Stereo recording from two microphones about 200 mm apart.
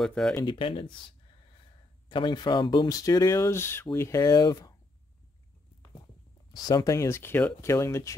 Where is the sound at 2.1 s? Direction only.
25° left (ahead or behind).